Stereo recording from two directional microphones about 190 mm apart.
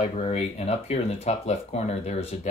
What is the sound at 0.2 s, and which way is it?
Speech, 35° left (ahead or behind).